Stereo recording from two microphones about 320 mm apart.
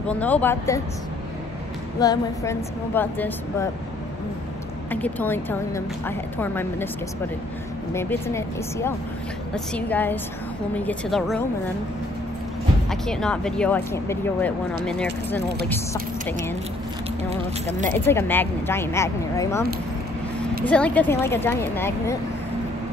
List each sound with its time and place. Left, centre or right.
0.1 s speech: centre
2.0 s speech: centre
4.9 s speech: centre
7.9 s speech: centre
12.9 s speech: centre
17.3 s speech: right
17.8 s speech: centre
20.6 s speech: centre